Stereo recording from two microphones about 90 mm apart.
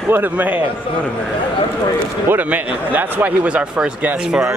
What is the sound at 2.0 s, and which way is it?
Speech, 25° right (ahead or behind).